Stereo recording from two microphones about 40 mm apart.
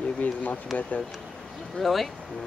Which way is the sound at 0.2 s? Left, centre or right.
Left.